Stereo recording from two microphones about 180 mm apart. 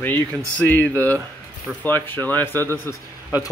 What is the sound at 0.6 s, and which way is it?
Speech, 10° left (ahead or behind).